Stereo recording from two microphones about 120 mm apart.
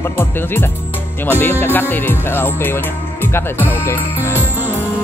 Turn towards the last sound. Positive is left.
turn(degrees=20)  # may be behind; listen again after turning